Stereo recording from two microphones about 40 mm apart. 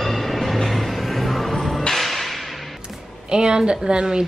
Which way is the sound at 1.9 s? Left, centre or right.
Centre.